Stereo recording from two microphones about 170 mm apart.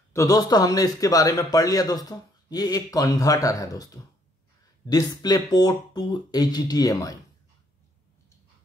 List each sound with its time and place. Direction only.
0.1 s speech: 20° left (ahead or behind)